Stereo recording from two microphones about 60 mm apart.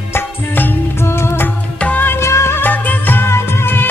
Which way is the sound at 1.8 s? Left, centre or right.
Left.